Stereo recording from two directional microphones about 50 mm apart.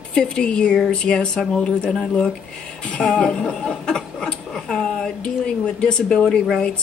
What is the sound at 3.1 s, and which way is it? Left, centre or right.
Speech, centre.